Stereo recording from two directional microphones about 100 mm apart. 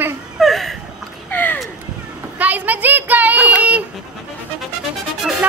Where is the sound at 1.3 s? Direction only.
20° left (ahead or behind).